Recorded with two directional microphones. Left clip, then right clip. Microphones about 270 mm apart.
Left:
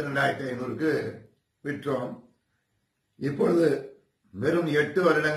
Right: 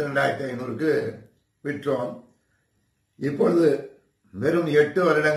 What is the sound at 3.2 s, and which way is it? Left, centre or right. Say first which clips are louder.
A man's voice: right 3 dB; centre.